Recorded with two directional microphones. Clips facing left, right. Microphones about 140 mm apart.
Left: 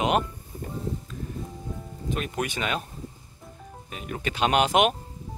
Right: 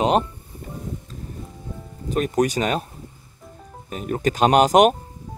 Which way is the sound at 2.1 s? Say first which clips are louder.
Right 9 dB; 40° right (ahead or behind).